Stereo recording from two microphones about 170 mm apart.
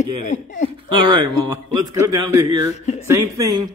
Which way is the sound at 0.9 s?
25° right (ahead or behind).